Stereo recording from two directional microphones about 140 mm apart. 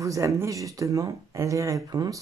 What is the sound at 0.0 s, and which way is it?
Speech, 20° right (ahead or behind).